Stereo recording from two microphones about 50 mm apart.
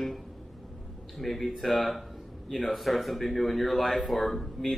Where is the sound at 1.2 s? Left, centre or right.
Centre.